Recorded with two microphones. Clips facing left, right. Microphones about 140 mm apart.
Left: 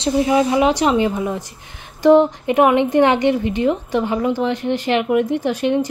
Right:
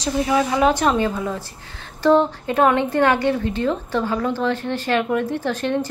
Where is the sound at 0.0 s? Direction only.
20° left (ahead or behind).